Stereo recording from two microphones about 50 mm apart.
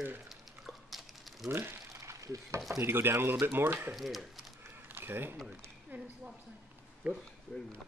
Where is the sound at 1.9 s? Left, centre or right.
Right.